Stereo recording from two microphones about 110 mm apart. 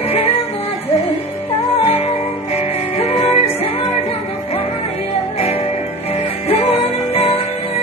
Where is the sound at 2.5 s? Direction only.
70° left (ahead or behind).